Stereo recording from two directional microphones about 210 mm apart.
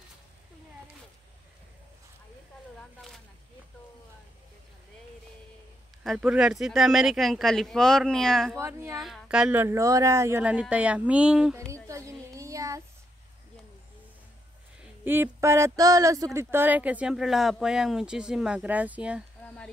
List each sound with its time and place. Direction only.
2.8 s a sound: centre (ahead or behind)
6.0 s speech: 5° right (ahead or behind)
8.5 s speech: 10° right (ahead or behind)
8.9 s a woman's voice: centre (ahead or behind)
15.0 s speech: 10° right (ahead or behind)
19.4 s a sound: 5° left (ahead or behind)